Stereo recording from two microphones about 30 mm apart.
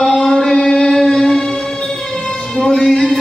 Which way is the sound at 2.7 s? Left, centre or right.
Left.